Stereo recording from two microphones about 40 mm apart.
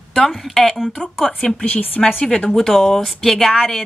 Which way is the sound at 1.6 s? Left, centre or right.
Left.